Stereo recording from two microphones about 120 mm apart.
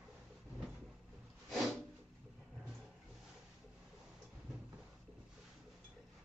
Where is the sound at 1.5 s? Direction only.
Centre (ahead or behind).